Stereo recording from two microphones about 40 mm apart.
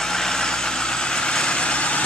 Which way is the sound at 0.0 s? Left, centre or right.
Centre.